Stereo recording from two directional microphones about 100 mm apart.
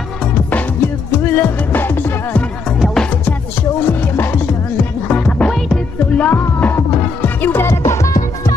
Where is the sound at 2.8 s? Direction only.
5° left (ahead or behind).